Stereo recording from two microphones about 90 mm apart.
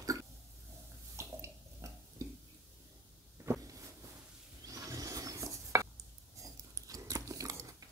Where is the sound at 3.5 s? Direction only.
30° right (ahead or behind).